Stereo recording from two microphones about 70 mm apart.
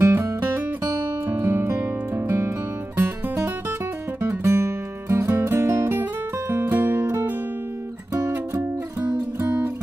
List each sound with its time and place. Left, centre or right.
0.0 s music: right